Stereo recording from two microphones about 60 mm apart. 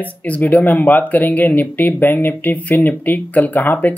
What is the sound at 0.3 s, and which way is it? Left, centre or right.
Speech, left.